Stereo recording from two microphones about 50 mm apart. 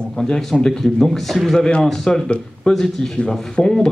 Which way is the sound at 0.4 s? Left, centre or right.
Centre.